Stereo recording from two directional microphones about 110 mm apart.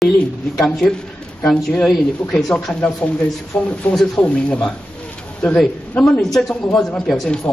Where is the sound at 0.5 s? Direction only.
5° left (ahead or behind).